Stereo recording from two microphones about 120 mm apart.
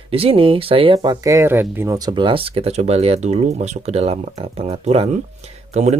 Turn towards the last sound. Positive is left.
turn(degrees=-70)  # may be behind; listen again after turning